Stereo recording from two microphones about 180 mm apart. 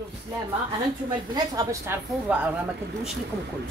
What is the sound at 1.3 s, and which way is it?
A woman's voice, 20° right (ahead or behind).